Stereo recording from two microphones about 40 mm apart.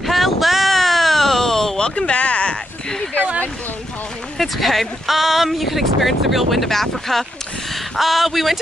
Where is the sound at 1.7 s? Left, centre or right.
Left.